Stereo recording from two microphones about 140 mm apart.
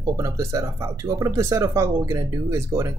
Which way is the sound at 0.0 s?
25° right (ahead or behind).